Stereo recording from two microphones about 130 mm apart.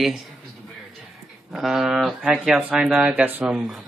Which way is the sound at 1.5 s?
5° right (ahead or behind).